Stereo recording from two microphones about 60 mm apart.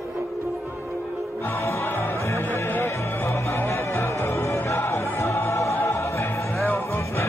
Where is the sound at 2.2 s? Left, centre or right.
Left.